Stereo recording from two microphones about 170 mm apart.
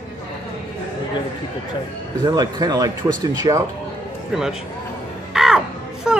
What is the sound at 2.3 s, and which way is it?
Speech, 25° right (ahead or behind).